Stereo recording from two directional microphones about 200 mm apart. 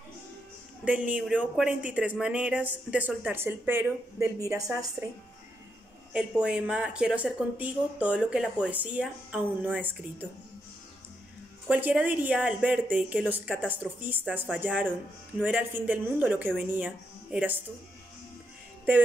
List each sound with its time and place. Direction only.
1.1 s speech: 5° right (ahead or behind)
6.1 s speech: 5° right (ahead or behind)
11.7 s speech: 5° right (ahead or behind)